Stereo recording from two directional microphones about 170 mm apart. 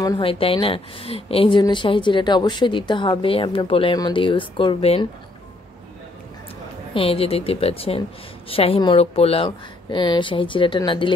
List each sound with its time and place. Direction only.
0.0 s a woman's voice: 30° left (ahead or behind)
6.9 s a woman's voice: 35° left (ahead or behind)